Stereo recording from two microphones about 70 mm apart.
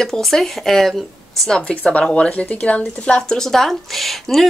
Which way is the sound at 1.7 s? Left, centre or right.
Centre.